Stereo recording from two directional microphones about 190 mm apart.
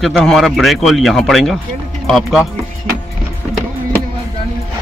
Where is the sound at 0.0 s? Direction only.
Centre (ahead or behind).